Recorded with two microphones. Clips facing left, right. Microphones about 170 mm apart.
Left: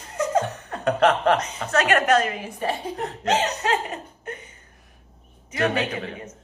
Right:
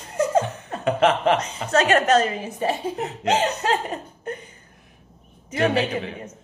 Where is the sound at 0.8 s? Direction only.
5° right (ahead or behind).